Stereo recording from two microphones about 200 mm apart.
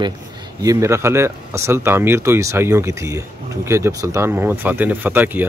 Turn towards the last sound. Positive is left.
turn(degrees=-10)  # may be behind; listen again after turning